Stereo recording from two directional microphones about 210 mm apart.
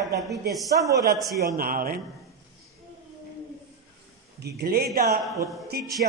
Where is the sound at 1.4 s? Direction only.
45° right (ahead or behind).